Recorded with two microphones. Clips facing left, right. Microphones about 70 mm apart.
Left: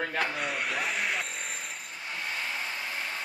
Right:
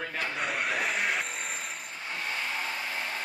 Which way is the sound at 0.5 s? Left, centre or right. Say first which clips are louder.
Right 1 dB; centre.